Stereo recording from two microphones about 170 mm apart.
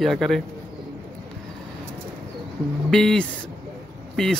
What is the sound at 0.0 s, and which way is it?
Speech, centre (ahead or behind).